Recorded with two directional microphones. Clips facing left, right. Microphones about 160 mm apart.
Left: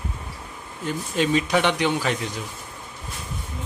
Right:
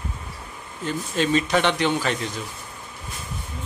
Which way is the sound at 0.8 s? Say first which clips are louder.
Even; 15° left (ahead or behind).